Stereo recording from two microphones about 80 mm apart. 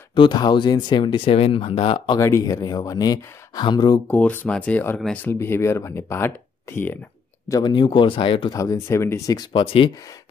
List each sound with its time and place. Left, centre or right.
0.1 s speech: left
2.1 s speech: left
4.1 s speech: left
5.2 s speech: left
7.6 s speech: left
8.5 s speech: left
8.7 s speech: left
9.5 s speech: left